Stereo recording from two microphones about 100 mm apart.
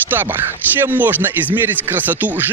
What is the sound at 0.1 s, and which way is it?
Speech, 20° right (ahead or behind).